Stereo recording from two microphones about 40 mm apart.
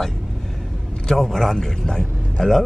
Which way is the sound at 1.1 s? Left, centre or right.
Centre.